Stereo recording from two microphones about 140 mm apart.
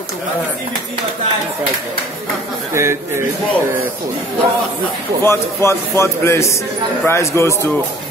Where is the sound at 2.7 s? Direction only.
20° right (ahead or behind).